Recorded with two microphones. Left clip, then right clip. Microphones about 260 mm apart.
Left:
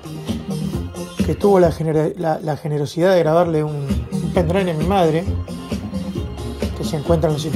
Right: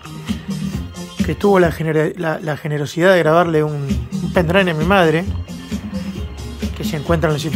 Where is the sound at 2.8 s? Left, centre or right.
Centre.